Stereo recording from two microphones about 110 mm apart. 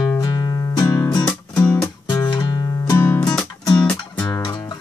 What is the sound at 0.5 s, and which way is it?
Music, 35° left (ahead or behind).